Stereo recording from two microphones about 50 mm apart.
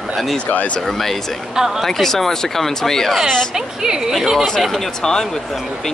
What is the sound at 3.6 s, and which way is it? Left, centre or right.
Speech, centre.